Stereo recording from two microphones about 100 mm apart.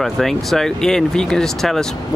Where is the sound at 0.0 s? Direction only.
Centre (ahead or behind).